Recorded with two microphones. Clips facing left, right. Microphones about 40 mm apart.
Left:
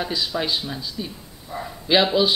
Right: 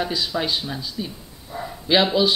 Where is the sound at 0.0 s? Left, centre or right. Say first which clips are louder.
Right 1 dB; centre.